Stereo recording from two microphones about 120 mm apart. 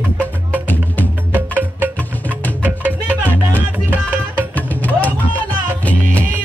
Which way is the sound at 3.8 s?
15° right (ahead or behind).